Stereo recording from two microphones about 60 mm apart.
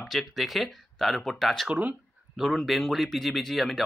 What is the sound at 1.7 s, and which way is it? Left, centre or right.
Speech, right.